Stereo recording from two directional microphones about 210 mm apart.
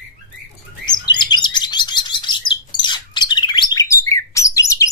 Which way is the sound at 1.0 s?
20° left (ahead or behind).